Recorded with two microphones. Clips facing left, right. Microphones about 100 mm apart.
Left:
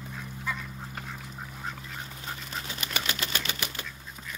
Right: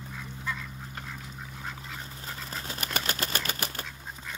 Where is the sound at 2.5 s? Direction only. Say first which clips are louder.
Right 2 dB; 45° right (ahead or behind).